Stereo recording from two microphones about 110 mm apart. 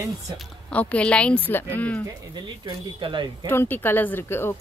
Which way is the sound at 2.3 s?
40° right (ahead or behind).